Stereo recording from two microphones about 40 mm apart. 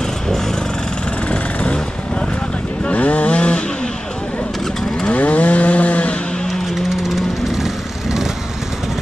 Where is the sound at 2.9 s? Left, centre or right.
Left.